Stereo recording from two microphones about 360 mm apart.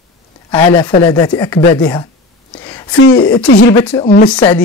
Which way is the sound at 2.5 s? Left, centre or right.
Centre.